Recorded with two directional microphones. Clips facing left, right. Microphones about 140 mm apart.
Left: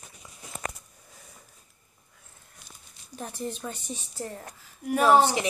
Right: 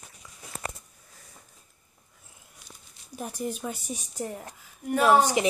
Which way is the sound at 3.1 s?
10° right (ahead or behind).